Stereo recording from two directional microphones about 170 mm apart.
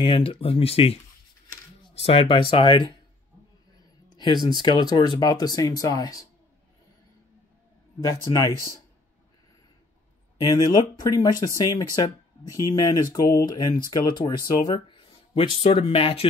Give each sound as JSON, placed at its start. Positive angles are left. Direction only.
{"t": 0.0, "sound": "speech", "side_deg": 30}
{"t": 2.0, "sound": "speech", "side_deg": 35}
{"t": 4.2, "sound": "speech", "side_deg": 25}
{"t": 8.0, "sound": "speech", "side_deg": 20}
{"t": 10.3, "sound": "speech", "side_deg": 20}